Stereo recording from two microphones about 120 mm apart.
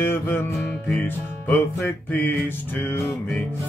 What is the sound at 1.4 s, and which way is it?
Music, 15° left (ahead or behind).